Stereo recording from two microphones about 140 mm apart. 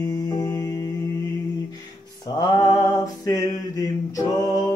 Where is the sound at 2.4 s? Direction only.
25° left (ahead or behind).